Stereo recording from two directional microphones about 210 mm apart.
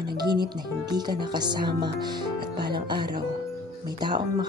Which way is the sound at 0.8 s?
20° right (ahead or behind).